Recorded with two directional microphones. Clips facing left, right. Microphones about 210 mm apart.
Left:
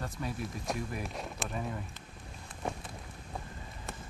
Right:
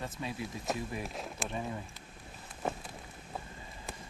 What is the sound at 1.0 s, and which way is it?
Speech, centre (ahead or behind).